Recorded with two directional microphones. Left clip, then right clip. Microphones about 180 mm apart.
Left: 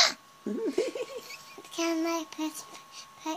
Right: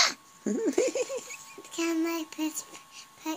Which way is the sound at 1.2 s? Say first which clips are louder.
Right 1 dB; 50° left (ahead or behind).